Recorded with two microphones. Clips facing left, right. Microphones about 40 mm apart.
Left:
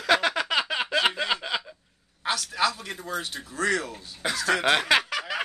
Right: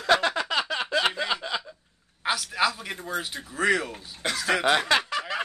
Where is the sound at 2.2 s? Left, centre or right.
Centre.